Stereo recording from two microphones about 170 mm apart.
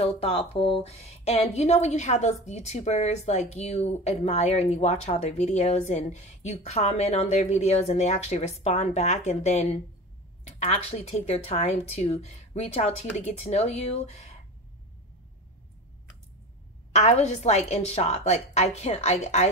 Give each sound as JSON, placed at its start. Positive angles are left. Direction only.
{"t": 0.0, "sound": "speech", "side_deg": 35}
{"t": 16.9, "sound": "speech", "side_deg": 40}